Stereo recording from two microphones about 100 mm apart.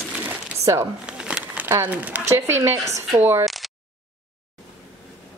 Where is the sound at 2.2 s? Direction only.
25° right (ahead or behind).